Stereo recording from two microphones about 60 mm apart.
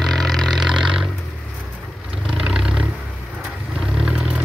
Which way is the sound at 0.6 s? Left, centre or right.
Centre.